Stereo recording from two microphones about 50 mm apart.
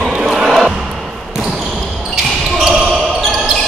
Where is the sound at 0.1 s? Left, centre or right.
Centre.